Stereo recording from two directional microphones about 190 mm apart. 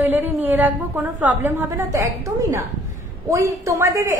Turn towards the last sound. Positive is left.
turn(degrees=-15)  # may be behind; listen again after turning